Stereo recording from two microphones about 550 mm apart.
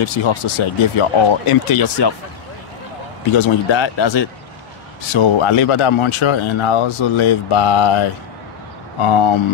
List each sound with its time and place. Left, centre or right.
0.0 s speech: left
3.3 s speech: left